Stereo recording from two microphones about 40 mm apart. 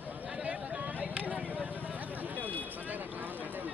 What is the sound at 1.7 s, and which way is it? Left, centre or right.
Vehicle, right.